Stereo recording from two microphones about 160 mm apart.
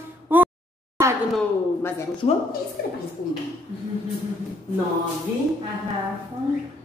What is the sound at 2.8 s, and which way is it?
Speech, 80° left.